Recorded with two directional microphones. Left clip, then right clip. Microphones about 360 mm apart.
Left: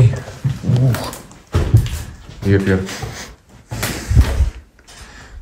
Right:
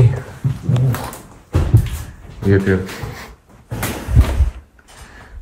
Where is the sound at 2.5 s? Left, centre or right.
Centre.